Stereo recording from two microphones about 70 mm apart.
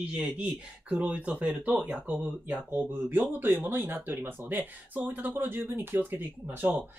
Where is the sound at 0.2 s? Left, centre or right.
Centre.